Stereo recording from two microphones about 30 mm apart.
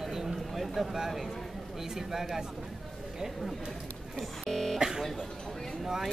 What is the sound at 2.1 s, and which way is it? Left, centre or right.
Speech, centre.